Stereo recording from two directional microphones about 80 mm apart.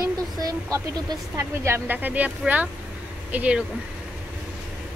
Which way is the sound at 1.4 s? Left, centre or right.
Right.